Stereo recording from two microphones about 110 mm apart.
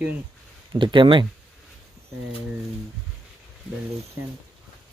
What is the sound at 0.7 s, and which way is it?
Speech, 50° right (ahead or behind).